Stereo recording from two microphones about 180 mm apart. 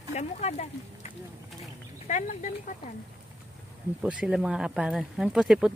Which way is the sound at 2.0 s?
45° left (ahead or behind).